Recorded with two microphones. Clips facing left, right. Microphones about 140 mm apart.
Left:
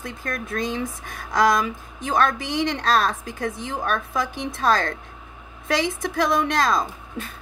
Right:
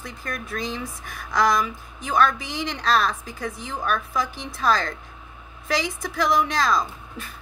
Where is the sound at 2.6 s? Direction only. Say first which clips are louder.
Left 2 dB; 50° left (ahead or behind).